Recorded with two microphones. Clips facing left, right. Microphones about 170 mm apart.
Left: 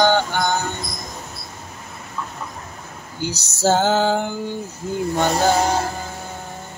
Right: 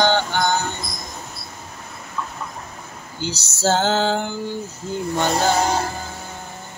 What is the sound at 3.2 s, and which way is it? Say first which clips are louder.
Speech: left 2 dB; 15° left (ahead or behind).